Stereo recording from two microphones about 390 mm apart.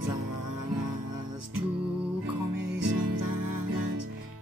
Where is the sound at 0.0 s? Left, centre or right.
Right.